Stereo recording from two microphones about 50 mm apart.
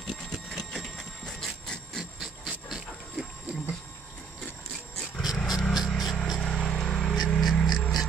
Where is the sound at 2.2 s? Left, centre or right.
Centre.